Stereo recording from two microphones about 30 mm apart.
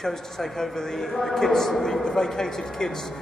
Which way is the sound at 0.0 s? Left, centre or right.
Centre.